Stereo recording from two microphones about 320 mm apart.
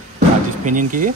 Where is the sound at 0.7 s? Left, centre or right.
Right.